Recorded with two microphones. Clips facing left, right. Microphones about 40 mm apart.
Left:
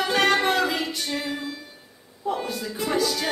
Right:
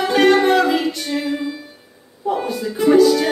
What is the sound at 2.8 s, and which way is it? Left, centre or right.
Music, centre.